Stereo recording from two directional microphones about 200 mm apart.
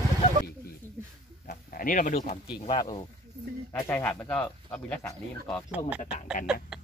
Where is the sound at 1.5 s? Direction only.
45° left (ahead or behind).